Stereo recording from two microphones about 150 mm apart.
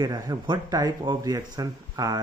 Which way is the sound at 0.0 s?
30° right (ahead or behind).